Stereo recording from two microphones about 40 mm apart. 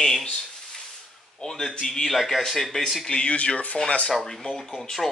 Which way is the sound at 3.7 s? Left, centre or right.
Left.